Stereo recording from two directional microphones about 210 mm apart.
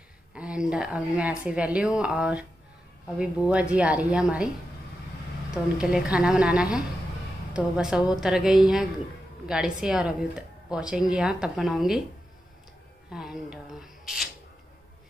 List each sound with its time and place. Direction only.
0.3 s speech: 5° right (ahead or behind)
5.5 s speech: 5° right (ahead or behind)
13.1 s a sound: 5° right (ahead or behind)